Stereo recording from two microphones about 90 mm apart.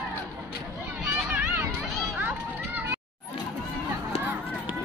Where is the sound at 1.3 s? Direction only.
20° right (ahead or behind).